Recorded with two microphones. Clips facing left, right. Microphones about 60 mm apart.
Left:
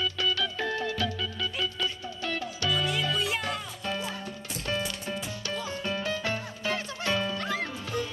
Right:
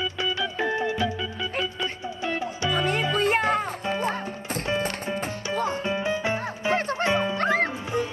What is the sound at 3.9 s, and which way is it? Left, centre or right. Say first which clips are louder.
Music: right 7 dB; right.